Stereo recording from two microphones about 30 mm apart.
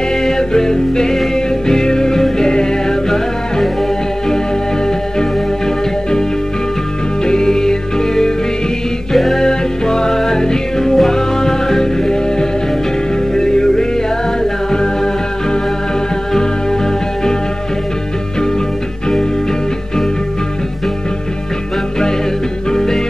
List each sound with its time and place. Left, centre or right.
0.2 s music: centre
7.2 s music: left
9.1 s music: centre
9.4 s music: left
22.7 s music: centre